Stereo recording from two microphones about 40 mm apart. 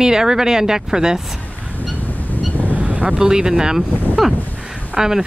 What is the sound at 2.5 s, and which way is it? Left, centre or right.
Vehicle, left.